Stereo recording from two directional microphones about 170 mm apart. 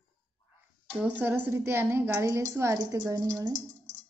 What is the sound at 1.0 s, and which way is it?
A woman's voice, 10° right (ahead or behind).